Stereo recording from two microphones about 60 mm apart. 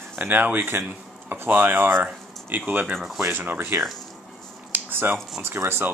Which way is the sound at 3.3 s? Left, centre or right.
Right.